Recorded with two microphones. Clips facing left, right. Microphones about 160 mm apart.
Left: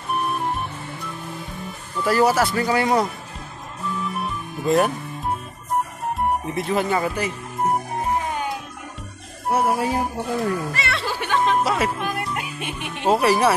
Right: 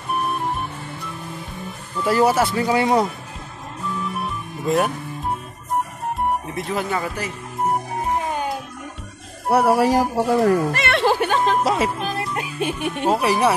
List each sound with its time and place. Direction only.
2.0 s speech: 20° right (ahead or behind)
4.6 s speech: centre (ahead or behind)
6.1 s music: centre (ahead or behind)
9.5 s speech: 70° right (ahead or behind); by 10.5 s 85° right
10.8 s music: 60° right (ahead or behind)
11.1 s music: 40° right (ahead or behind)
11.6 s music: 20° right (ahead or behind)
12.5 s speech: 40° right (ahead or behind)
13.2 s speech: 15° right (ahead or behind)